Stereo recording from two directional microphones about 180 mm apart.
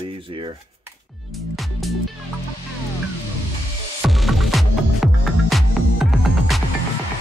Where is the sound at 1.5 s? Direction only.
Centre (ahead or behind).